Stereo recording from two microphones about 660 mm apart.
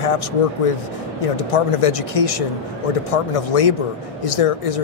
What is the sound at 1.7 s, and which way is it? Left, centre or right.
Speech, left.